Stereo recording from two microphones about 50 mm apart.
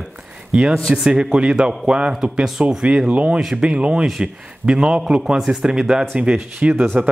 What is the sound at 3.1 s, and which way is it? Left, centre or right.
A man's voice, right.